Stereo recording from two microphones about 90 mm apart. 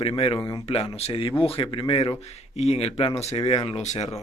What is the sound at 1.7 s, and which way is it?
Speech, 65° left (ahead or behind).